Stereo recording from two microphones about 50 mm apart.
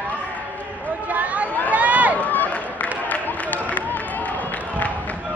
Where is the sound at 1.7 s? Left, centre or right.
Right.